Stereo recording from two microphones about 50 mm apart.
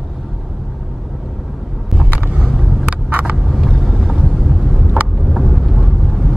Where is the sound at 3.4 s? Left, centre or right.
Centre.